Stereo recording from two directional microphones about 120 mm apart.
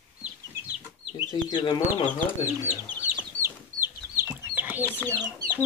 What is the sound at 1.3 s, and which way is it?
Speech, 35° left (ahead or behind).